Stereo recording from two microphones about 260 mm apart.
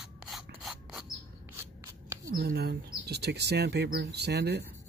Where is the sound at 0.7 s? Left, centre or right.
Centre.